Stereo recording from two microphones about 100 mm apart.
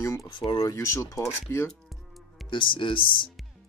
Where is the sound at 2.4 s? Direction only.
55° left (ahead or behind).